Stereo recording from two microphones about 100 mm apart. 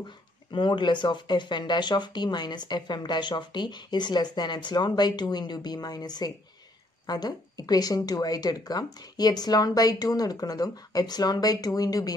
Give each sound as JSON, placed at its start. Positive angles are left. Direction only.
{"t": 0.5, "sound": "speech", "side_deg": 50}